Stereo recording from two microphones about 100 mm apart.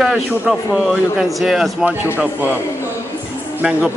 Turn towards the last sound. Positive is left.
turn(degrees=-15)  # may be behind; listen again after turning